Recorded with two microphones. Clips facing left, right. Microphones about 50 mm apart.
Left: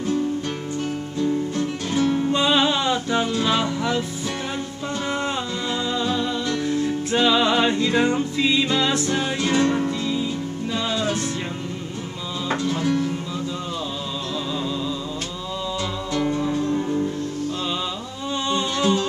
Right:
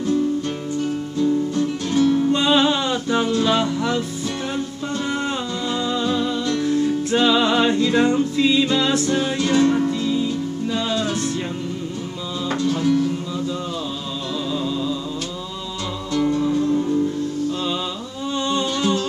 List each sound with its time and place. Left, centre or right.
1.6 s music: centre
3.4 s speech: centre
5.0 s music: centre
12.6 s music: centre
14.5 s music: centre
16.1 s music: centre
18.5 s music: centre